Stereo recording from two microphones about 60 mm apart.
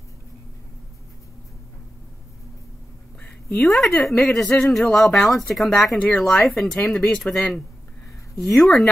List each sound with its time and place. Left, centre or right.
3.2 s a sound: left
3.6 s a woman's voice: centre
4.5 s speech: left
4.8 s a woman's voice: centre
5.9 s speech: centre
6.2 s a woman's voice: centre